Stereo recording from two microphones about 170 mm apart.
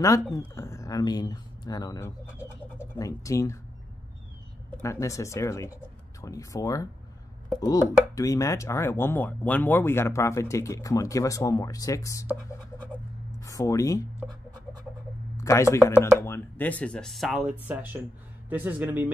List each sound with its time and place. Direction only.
0.6 s speech: 15° left (ahead or behind)
2.2 s speech: 10° right (ahead or behind)
2.9 s speech: 20° left (ahead or behind)
4.8 s speech: 20° left (ahead or behind)
13.4 s speech: 20° left (ahead or behind)
15.3 s speech: 15° left (ahead or behind); by 19.0 s 10° right (ahead or behind)